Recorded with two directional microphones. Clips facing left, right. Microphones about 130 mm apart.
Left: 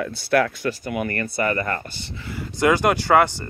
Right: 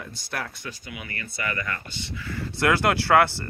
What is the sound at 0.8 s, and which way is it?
Speech, 50° left (ahead or behind).